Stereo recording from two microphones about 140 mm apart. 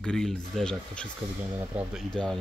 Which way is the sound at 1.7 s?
10° right (ahead or behind).